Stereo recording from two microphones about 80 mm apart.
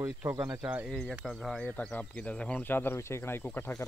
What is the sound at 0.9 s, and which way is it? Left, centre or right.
Speech, centre.